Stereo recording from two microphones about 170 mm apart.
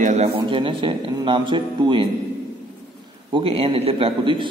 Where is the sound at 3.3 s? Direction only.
30° right (ahead or behind).